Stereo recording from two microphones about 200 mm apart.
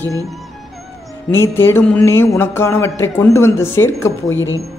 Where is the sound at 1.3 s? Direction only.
10° left (ahead or behind).